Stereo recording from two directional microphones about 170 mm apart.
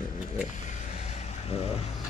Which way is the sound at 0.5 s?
40° left (ahead or behind).